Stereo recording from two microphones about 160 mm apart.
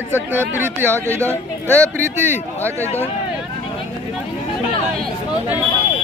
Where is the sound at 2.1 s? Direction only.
15° right (ahead or behind).